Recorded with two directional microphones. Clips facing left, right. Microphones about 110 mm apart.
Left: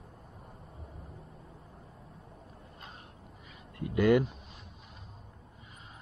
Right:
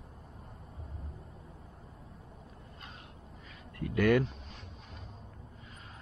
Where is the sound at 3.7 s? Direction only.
20° left (ahead or behind).